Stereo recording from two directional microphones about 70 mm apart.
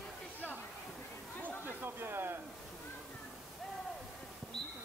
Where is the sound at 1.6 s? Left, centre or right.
Right.